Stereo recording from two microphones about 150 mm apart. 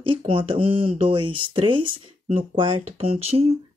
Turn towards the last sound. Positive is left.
turn(degrees=-40)  # may be behind; listen again after turning